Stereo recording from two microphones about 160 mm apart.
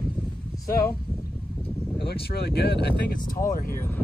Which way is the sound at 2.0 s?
80° left.